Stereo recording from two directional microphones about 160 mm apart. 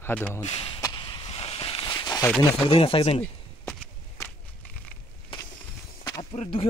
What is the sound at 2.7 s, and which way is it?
Speech, 35° left (ahead or behind).